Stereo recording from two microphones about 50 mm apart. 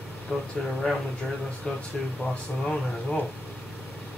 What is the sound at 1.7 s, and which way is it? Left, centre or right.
Speech, centre.